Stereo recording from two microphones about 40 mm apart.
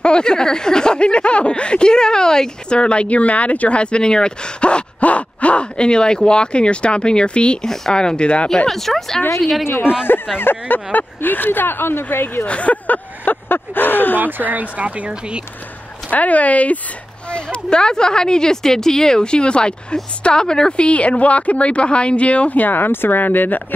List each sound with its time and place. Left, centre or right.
0.0 s speech: left
7.6 s speech: centre
7.9 s speech: left
8.6 s speech: centre
9.7 s speech: left
12.4 s speech: left
14.2 s speech: right
16.1 s speech: left
17.3 s speech: left
20.8 s speech: left